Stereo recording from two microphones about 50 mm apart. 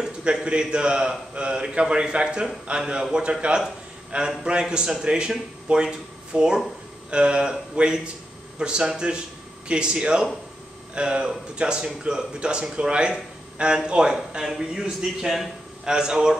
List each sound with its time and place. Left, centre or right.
0.2 s a man's voice: centre